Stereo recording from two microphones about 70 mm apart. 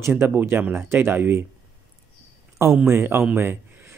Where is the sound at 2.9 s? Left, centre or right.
Right.